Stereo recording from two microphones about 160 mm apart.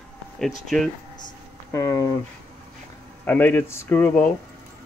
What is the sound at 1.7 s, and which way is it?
Speech, 20° left (ahead or behind).